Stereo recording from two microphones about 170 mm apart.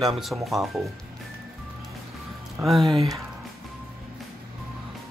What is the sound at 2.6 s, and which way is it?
Speech, centre (ahead or behind).